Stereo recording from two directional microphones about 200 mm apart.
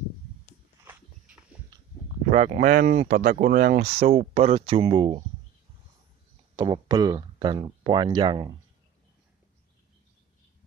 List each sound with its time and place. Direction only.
2.3 s speech: 35° right (ahead or behind)
3.8 s speech: 30° right (ahead or behind)
6.5 s speech: 20° right (ahead or behind)